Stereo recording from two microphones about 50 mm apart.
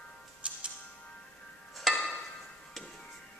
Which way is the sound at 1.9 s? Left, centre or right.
Centre.